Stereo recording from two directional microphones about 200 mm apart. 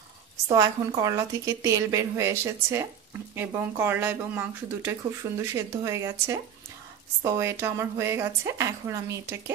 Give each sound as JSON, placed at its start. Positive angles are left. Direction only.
{"t": 0.5, "sound": "a woman's voice", "side_deg": -20}